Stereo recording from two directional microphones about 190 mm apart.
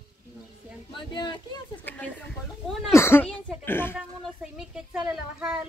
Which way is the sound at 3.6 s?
10° left (ahead or behind).